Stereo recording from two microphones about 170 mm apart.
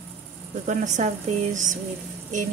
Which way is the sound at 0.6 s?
45° right (ahead or behind).